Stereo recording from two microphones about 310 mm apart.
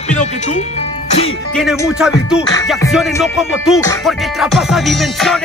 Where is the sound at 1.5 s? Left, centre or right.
Centre.